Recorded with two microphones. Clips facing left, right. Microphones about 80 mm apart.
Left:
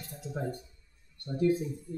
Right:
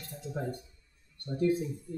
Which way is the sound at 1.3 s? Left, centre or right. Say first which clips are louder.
Left 1 dB; centre.